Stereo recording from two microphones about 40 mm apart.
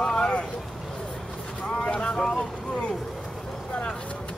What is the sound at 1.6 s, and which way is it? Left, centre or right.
Boat, left.